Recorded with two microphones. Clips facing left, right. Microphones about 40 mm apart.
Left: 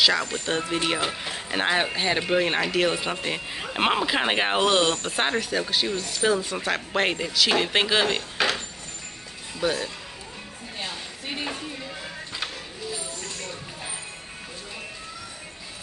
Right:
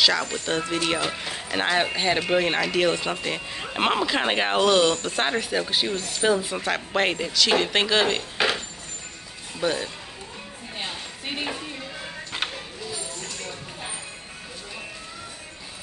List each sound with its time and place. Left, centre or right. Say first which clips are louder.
0.0 s speech: even; centre
5.4 s speech: right 1 dB; centre
8.4 s a sound: right 1 dB; centre
9.6 s speech: even; centre
10.8 s a sound: right 1 dB; centre
11.5 s music: even; centre